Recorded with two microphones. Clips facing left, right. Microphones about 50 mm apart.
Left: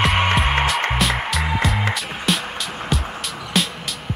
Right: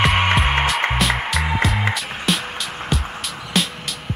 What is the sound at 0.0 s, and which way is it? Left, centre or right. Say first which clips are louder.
Music: right 1 dB; centre.